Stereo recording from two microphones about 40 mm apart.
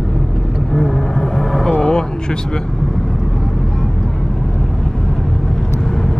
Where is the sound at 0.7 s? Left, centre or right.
Centre.